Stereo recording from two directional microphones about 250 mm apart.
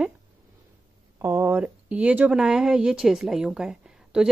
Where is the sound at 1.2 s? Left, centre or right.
Centre.